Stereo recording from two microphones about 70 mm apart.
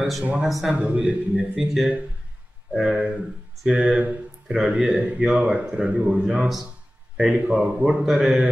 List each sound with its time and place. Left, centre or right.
0.2 s speech: right
0.5 s a man's voice: centre
0.7 s speech: centre
2.7 s speech: centre